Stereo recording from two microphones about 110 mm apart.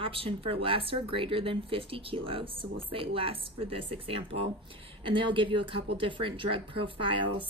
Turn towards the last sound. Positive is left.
turn(degrees=-50)  # may be behind; listen again after turning